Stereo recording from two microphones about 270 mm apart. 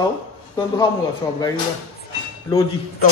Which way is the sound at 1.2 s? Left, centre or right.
Centre.